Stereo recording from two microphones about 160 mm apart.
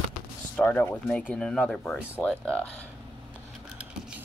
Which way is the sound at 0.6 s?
10° left (ahead or behind).